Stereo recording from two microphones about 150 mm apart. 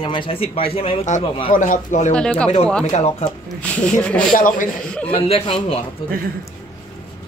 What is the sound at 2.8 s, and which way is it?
Speech, 50° left (ahead or behind).